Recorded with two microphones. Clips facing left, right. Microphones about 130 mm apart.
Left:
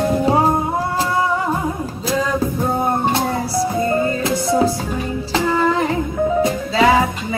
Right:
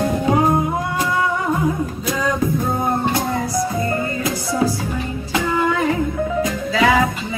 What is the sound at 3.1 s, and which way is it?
Music, 30° left (ahead or behind).